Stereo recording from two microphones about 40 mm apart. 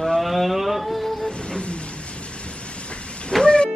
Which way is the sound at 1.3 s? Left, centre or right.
Left.